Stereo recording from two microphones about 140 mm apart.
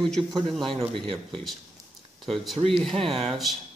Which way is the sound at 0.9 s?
40° right (ahead or behind).